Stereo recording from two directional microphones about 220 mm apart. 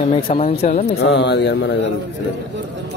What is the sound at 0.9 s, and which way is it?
Speech, 50° left (ahead or behind).